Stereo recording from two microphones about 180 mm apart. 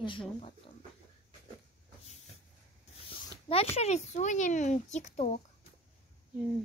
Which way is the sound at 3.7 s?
40° left (ahead or behind).